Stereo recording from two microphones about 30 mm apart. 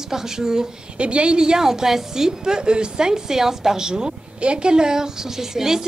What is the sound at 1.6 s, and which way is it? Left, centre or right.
A woman's voice, centre.